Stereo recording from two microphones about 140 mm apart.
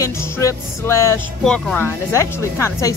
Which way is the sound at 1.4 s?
5° left (ahead or behind).